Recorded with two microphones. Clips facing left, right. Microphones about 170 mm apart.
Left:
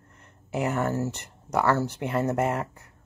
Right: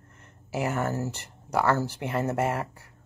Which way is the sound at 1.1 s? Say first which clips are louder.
Even; 35° right (ahead or behind).